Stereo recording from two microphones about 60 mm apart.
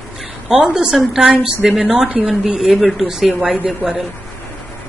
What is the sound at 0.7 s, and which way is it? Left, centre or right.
Speech, centre.